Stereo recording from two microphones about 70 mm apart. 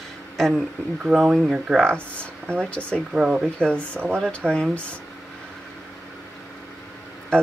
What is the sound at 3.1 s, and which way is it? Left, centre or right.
Speech, centre.